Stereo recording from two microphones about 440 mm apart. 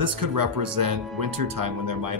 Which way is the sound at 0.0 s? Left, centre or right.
Right.